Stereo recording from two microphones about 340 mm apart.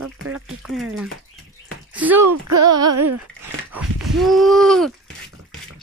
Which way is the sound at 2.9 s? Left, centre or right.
Right.